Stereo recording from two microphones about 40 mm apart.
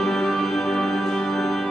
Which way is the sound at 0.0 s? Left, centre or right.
Centre.